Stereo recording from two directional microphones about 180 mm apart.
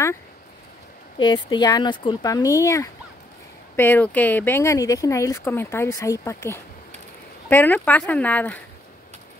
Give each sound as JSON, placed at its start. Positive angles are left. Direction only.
{"t": 1.1, "sound": "speech", "side_deg": 25}